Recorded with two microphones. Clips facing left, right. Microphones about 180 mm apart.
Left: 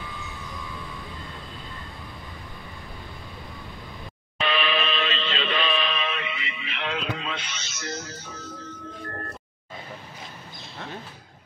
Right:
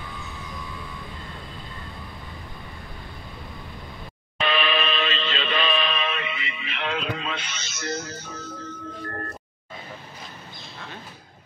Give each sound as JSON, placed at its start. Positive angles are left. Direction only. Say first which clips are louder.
{"t": 4.4, "sound": "music", "louder": "right 1 dB", "side_deg": -50}